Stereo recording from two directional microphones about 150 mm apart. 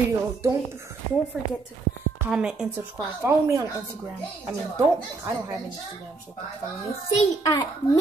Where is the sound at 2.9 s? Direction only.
20° right (ahead or behind).